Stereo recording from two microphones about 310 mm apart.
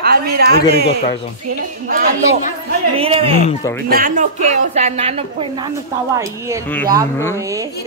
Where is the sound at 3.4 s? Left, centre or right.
Centre.